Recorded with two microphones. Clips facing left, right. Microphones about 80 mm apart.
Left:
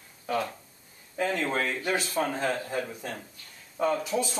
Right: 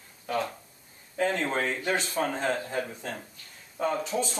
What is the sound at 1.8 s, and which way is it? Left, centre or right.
Speech, centre.